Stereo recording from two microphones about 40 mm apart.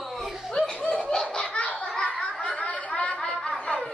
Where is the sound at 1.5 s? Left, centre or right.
Left.